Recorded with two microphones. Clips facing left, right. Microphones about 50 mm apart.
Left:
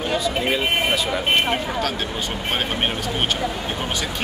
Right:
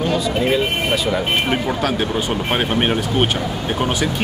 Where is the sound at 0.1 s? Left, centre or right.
Centre.